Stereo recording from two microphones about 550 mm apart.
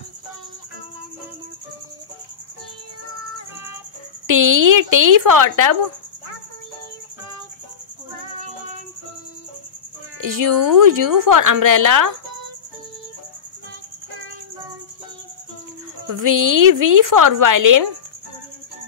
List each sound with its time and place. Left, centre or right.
4.3 s a woman's voice: right
10.2 s a woman's voice: right
16.1 s a woman's voice: right